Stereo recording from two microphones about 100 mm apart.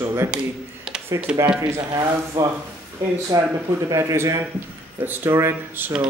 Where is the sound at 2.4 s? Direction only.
35° right (ahead or behind).